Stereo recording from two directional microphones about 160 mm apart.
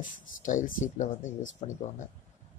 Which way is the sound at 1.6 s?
40° left (ahead or behind).